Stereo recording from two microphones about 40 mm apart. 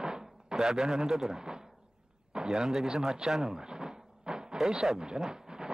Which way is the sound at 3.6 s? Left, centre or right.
Centre.